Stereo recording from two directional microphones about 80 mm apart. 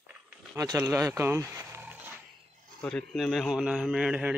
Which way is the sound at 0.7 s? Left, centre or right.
Right.